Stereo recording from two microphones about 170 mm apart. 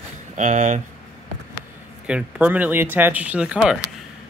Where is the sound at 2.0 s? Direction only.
5° right (ahead or behind).